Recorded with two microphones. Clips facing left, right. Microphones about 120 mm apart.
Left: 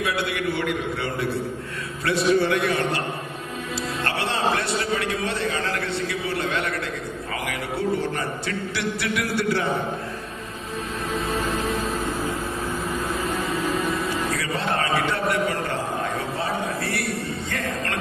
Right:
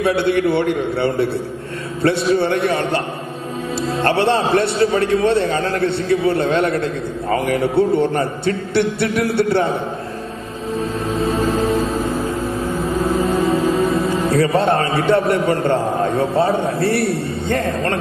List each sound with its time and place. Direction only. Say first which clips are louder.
0.0 s a man's voice: right 9 dB; 30° right (ahead or behind)
11.1 s music: right 7 dB; 35° right (ahead or behind)
14.6 s a man's voice: right 7 dB; 30° right (ahead or behind)